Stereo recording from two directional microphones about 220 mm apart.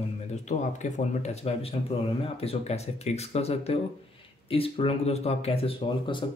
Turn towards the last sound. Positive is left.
turn(degrees=25)  # may be behind; listen again after turning